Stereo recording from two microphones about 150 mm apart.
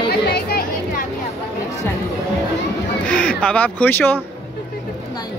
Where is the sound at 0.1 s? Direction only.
90° left.